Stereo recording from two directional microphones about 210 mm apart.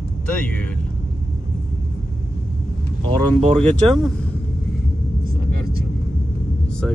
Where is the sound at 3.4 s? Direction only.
25° right (ahead or behind).